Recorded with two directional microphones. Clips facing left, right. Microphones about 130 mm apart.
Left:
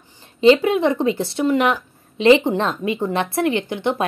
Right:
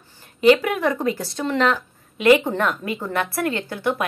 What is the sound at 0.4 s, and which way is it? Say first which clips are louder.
A woman's voice: left 3 dB; 25° left (ahead or behind).